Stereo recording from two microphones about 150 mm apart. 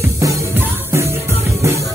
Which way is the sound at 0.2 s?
20° right (ahead or behind).